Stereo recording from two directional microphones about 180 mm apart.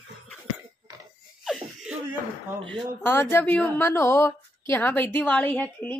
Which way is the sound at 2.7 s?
10° left (ahead or behind).